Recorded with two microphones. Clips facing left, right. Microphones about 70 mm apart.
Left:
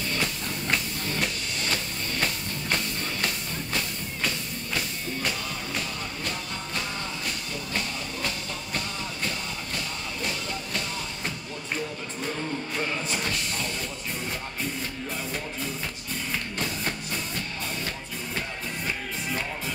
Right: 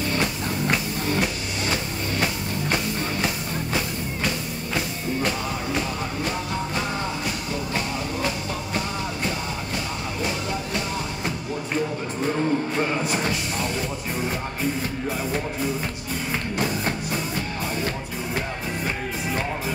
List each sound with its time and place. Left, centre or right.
0.1 s music: centre
12.2 s music: right
13.0 s music: centre
16.5 s music: centre